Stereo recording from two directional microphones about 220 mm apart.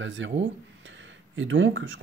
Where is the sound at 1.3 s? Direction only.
60° right (ahead or behind).